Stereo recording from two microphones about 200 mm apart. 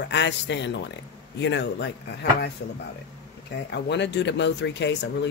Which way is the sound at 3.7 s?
60° left (ahead or behind).